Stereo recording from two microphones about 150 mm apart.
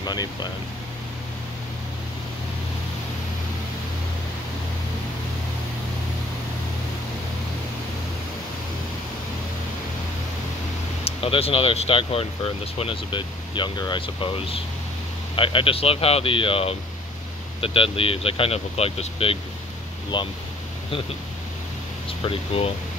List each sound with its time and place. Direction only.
0.0 s speech: 30° left (ahead or behind)
11.1 s speech: 40° left (ahead or behind)
22.2 s speech: 40° left (ahead or behind)